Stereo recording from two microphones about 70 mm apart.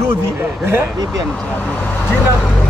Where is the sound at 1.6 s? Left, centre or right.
Centre.